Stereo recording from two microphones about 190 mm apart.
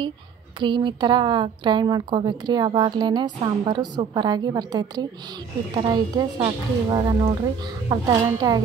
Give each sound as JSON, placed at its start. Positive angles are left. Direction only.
{"t": 0.6, "sound": "a woman's voice", "side_deg": -25}